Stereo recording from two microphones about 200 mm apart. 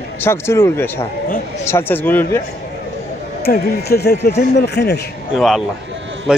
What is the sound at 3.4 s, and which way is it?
Speech, 50° left (ahead or behind).